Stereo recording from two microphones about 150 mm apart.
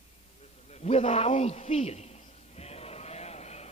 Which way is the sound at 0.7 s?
45° left (ahead or behind).